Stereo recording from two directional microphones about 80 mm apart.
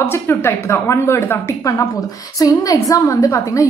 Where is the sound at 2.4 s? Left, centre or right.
Left.